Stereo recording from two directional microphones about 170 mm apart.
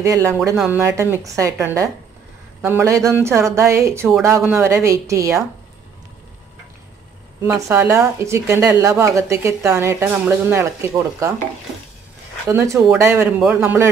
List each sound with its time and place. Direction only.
0.0 s speech: 15° right (ahead or behind)
7.4 s speech: 15° right (ahead or behind)
12.4 s speech: 20° right (ahead or behind)